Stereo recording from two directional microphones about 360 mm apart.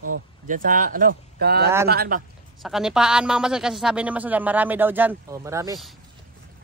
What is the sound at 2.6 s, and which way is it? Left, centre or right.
Speech, centre.